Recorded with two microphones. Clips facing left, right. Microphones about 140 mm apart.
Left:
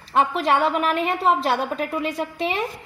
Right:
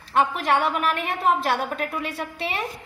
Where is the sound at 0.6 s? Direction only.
35° left (ahead or behind).